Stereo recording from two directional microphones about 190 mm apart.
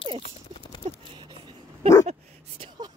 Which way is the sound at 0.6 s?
25° left (ahead or behind).